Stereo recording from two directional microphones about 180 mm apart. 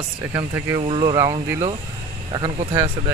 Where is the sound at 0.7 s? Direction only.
30° right (ahead or behind).